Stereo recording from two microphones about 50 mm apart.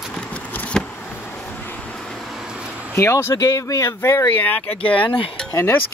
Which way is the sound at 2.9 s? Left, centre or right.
Left.